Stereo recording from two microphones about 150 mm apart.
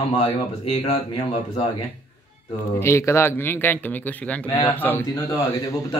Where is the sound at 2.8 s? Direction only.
20° left (ahead or behind).